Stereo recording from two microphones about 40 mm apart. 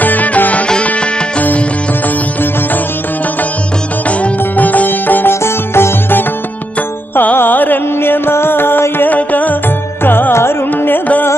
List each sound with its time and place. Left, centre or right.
0.0 s music: left
4.2 s music: left
5.3 s music: left
7.3 s music: left
8.0 s music: left
9.1 s music: left
10.0 s carnatic music: left